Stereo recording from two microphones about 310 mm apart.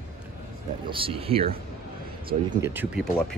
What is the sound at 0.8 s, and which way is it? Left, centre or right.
Speech, centre.